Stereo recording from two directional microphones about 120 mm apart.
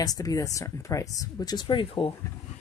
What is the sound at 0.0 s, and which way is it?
Speech, 30° left (ahead or behind).